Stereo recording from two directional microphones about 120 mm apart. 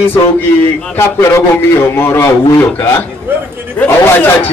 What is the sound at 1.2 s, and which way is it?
A man's voice, 25° left (ahead or behind).